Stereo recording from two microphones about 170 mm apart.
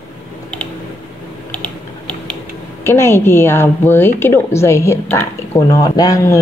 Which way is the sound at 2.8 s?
15° left (ahead or behind).